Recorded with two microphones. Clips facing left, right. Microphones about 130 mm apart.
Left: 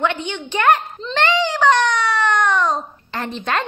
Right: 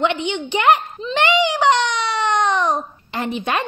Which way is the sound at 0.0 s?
15° right (ahead or behind).